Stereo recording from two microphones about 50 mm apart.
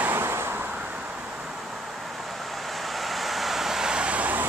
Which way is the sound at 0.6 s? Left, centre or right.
Right.